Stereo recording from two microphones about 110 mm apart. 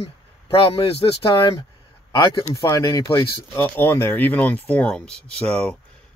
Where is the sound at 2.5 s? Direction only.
30° left (ahead or behind); by 5.3 s 10° left (ahead or behind).